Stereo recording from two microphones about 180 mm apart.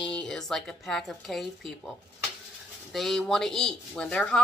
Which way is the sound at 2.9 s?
Centre (ahead or behind).